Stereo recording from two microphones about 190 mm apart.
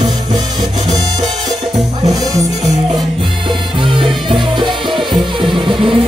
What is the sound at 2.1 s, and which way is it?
Music, 20° right (ahead or behind).